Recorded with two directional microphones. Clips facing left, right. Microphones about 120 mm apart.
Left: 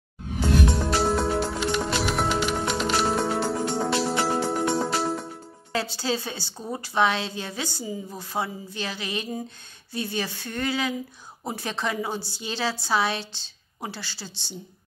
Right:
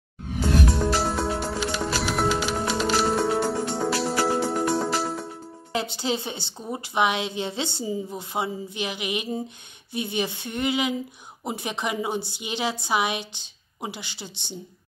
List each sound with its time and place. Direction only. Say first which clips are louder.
0.7 s music: left 1 dB; centre (ahead or behind)
5.7 s a woman's voice: even; 20° right (ahead or behind)